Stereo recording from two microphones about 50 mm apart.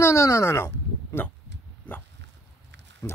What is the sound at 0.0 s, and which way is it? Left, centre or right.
Speech, left.